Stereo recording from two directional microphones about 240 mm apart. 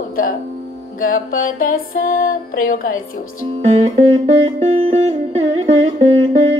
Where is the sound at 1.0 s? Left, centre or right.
Left.